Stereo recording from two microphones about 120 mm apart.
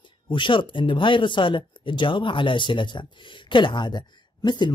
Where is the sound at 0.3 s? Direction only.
45° left (ahead or behind).